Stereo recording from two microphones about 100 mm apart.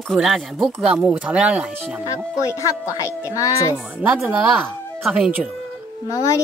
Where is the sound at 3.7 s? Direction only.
10° right (ahead or behind).